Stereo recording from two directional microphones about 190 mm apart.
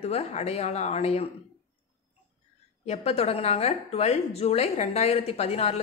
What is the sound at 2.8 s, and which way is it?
A woman's voice, 35° left (ahead or behind).